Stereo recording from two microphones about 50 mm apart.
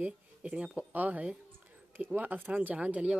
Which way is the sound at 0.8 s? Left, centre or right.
Right.